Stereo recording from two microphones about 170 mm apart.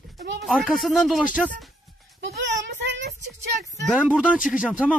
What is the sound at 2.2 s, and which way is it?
Child singing, 90° right.